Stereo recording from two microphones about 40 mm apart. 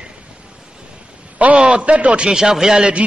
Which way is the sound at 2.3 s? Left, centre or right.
Centre.